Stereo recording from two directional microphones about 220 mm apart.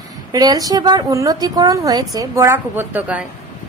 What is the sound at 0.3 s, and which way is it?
A woman's voice, 15° right (ahead or behind).